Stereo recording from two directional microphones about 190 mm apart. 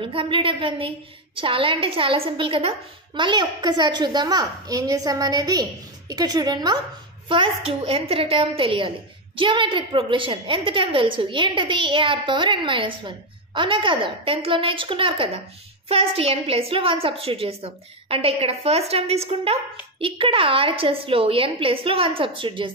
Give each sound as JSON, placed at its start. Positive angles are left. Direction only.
{"t": 0.0, "sound": "a woman's voice", "side_deg": -30}